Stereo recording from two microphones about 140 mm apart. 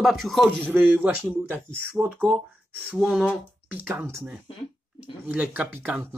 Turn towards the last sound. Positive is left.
turn(degrees=-10)  # may be behind; listen again after turning